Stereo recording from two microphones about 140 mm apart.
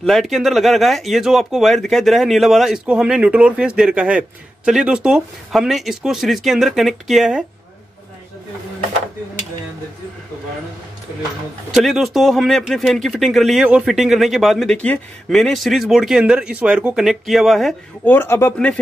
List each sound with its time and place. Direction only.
0.0 s speech: centre (ahead or behind)
11.7 s speech: centre (ahead or behind)
18.0 s a man's voice: 15° left (ahead or behind)